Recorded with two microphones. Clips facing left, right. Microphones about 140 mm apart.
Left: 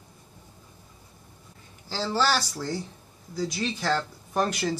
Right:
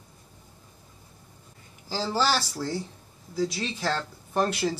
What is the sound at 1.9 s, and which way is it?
Speech, 5° right (ahead or behind).